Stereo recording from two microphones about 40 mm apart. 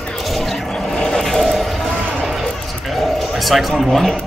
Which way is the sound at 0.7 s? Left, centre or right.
Left.